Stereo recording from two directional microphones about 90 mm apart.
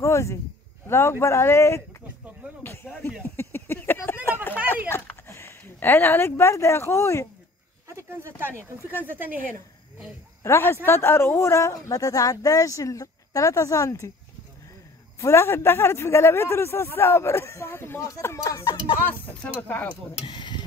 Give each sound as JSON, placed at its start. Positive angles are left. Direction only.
{"t": 0.0, "sound": "speech", "side_deg": 35}
{"t": 2.6, "sound": "music", "side_deg": 25}
{"t": 3.3, "sound": "a sound", "side_deg": 25}
{"t": 7.9, "sound": "speech", "side_deg": -30}
{"t": 10.4, "sound": "a man's voice", "side_deg": 30}
{"t": 15.1, "sound": "a man's voice", "side_deg": 30}
{"t": 19.7, "sound": "speech", "side_deg": 15}
{"t": 20.2, "sound": "a sound", "side_deg": 60}